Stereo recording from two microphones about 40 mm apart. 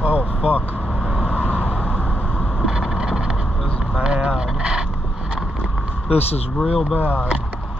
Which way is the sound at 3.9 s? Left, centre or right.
Right.